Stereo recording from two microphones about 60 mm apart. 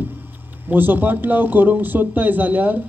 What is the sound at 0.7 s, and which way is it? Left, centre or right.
A man's voice, right.